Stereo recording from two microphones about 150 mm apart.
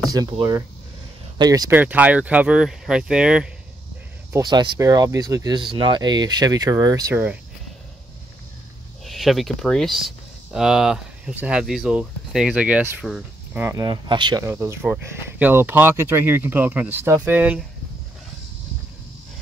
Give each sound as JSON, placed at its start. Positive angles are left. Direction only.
{"t": 0.1, "sound": "speech", "side_deg": -25}
{"t": 1.7, "sound": "speech", "side_deg": -10}
{"t": 4.3, "sound": "speech", "side_deg": -25}
{"t": 9.0, "sound": "speech", "side_deg": 0}
{"t": 13.6, "sound": "speech", "side_deg": -25}
{"t": 14.4, "sound": "speech", "side_deg": -15}